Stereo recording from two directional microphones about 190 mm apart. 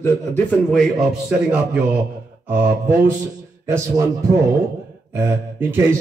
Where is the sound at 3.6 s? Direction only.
15° right (ahead or behind).